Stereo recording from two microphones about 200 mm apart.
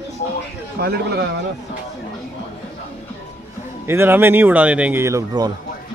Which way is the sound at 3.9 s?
10° right (ahead or behind).